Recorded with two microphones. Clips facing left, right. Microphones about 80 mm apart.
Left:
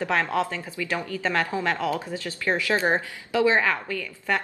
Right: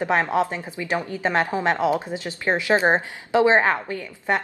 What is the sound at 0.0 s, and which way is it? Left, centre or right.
A woman's voice, right.